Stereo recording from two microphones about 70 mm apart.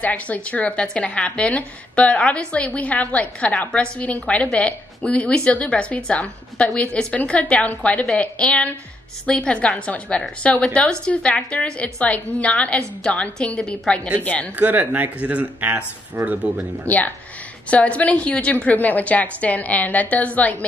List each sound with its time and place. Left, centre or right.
0.0 s a woman's voice: left
14.5 s speech: right
16.2 s speech: right
16.9 s a woman's voice: left